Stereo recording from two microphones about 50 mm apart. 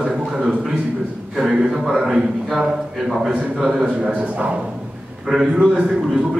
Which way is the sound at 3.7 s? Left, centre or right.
Right.